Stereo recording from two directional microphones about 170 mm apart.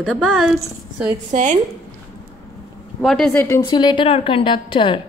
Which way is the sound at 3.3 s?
15° left (ahead or behind).